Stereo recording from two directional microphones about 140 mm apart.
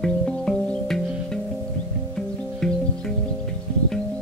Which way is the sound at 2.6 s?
5° left (ahead or behind).